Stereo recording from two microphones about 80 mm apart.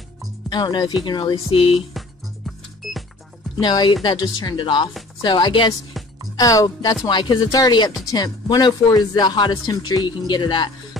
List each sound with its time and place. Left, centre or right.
0.5 s speech: left
2.0 s music: centre
3.5 s speech: left
6.3 s speech: left
7.1 s speech: left
7.5 s a man's voice: left